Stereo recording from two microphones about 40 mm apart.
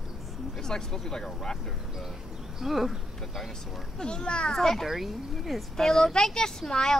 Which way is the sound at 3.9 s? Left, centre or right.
Left.